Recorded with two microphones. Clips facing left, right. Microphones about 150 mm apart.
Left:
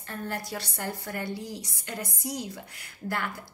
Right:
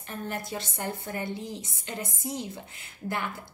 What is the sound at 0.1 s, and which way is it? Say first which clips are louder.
A woman's voice: even; 20° right (ahead or behind).